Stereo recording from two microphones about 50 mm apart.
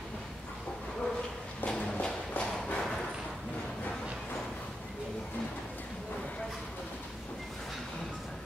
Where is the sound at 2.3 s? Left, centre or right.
Left.